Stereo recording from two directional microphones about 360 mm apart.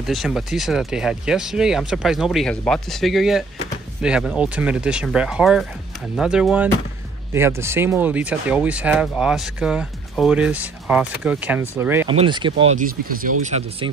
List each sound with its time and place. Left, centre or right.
0.0 s speech: centre